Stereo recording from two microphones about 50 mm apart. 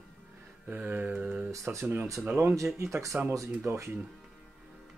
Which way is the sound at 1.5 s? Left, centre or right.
Right.